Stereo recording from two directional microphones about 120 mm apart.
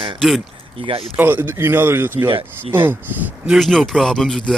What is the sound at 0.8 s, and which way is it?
Speech, 50° right (ahead or behind).